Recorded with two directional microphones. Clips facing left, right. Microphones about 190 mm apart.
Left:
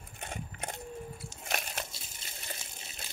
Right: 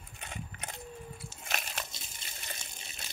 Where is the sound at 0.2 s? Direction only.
50° left (ahead or behind).